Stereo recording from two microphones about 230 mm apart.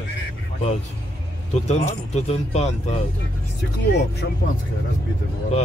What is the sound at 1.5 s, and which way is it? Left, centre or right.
Speech, left.